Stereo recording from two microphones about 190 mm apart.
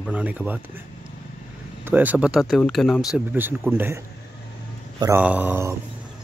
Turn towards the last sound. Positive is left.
turn(degrees=-15)  # may be behind; listen again after turning